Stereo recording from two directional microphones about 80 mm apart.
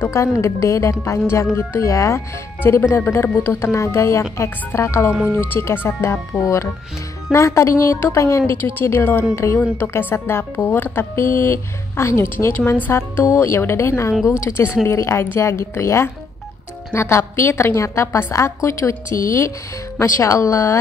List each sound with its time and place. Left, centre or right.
0.1 s speech: left
5.1 s speech: centre
5.5 s speech: left
8.7 s speech: left